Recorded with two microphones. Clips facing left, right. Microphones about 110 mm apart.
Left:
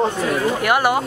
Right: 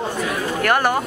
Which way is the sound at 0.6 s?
10° left (ahead or behind).